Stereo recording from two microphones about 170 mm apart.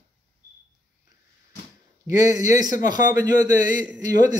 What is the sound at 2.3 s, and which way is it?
A man's voice, 25° right (ahead or behind).